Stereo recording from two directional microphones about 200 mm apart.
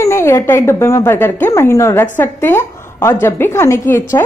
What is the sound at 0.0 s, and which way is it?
A woman's voice, 15° left (ahead or behind).